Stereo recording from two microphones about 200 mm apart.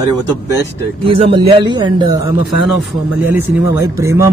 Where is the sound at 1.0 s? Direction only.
30° right (ahead or behind).